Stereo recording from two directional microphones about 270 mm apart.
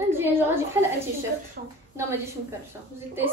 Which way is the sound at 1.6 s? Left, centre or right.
Right.